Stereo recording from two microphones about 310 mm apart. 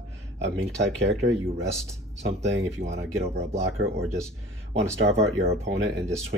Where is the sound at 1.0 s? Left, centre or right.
Right.